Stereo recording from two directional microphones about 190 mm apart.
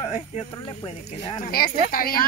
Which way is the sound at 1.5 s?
50° left (ahead or behind).